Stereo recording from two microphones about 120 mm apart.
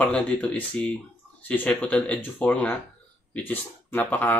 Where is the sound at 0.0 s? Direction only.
10° left (ahead or behind).